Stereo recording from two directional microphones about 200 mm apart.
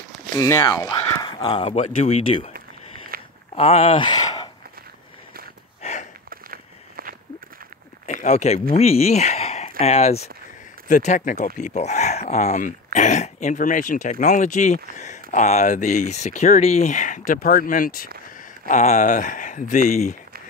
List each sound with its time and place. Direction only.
0.3 s speech: 15° left (ahead or behind)
3.1 s walk: 45° right (ahead or behind)
3.5 s a sound: 30° left (ahead or behind)
5.8 s a sound: 35° left (ahead or behind)
6.3 s walk: 45° right (ahead or behind)
8.1 s speech: 35° left (ahead or behind)